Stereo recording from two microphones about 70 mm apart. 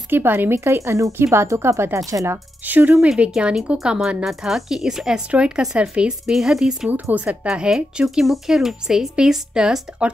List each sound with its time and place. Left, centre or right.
0.1 s speech: right
3.0 s a woman's voice: centre
6.9 s speech: right
7.2 s a woman's voice: centre